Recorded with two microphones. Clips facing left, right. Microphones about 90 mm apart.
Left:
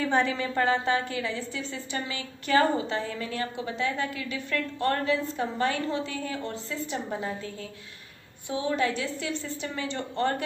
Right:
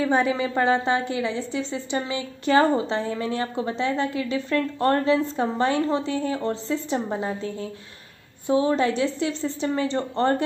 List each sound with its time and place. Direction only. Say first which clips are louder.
0.0 s a woman's voice: right 4 dB; 10° right (ahead or behind); by 7.3 s 30° right (ahead or behind)
8.5 s a woman's voice: right 7 dB; 35° right (ahead or behind)